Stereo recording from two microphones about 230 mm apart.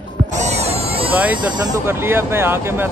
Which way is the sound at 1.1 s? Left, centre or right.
Centre.